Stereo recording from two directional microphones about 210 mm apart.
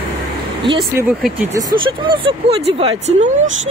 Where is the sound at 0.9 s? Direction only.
10° right (ahead or behind).